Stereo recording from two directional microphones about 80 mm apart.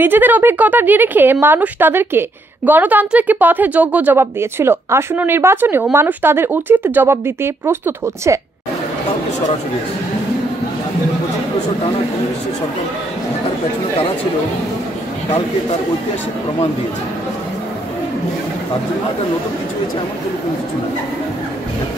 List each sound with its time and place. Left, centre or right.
0.0 s a woman's voice: right
4.2 s a woman's voice: right